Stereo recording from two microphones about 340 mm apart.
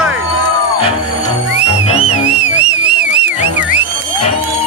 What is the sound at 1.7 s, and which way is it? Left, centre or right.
Music, centre.